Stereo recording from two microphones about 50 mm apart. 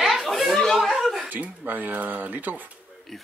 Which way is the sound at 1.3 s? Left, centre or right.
Right.